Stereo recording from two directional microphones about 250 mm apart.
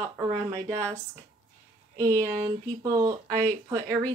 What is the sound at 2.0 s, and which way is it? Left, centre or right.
Speech, centre.